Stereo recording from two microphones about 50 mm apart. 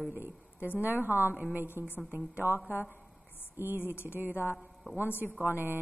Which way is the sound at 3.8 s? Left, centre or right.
Left.